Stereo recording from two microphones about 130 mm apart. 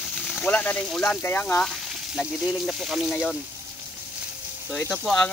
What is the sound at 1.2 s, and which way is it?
Speech, 15° left (ahead or behind).